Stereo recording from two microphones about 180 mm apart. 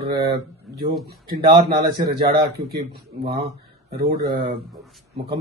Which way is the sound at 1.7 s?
60° right (ahead or behind).